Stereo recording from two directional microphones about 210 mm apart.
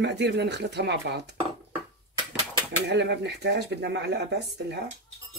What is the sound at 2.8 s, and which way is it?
Speech, 55° right (ahead or behind).